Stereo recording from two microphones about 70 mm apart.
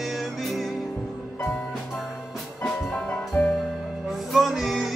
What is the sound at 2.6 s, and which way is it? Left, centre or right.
Music, centre.